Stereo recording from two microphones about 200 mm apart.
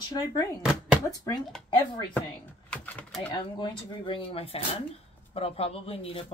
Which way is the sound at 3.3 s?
25° left (ahead or behind).